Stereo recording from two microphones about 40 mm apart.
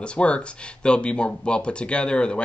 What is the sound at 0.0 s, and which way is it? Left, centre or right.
Speech, left.